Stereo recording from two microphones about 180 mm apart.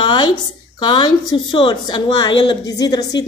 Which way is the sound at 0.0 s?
25° left (ahead or behind).